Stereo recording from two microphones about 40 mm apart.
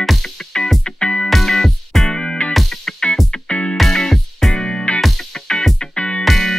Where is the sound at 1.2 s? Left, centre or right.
Centre.